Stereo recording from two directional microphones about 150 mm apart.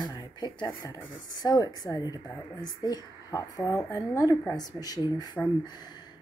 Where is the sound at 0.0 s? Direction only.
25° left (ahead or behind).